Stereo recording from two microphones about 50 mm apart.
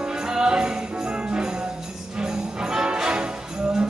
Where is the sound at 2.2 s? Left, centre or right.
Centre.